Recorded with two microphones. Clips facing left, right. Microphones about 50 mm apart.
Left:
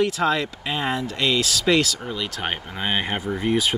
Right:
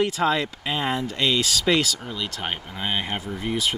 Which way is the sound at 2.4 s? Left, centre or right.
Centre.